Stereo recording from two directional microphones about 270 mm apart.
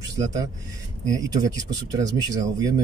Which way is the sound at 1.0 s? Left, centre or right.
Centre.